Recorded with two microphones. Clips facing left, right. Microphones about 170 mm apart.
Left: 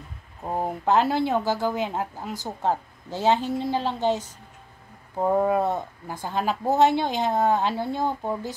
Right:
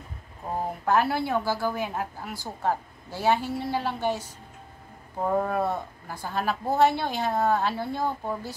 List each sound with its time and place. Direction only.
0.7 s a woman's voice: 20° left (ahead or behind)